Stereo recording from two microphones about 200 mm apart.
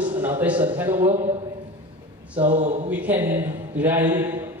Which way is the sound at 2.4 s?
40° right (ahead or behind).